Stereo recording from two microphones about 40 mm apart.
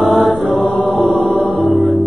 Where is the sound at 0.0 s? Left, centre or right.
Centre.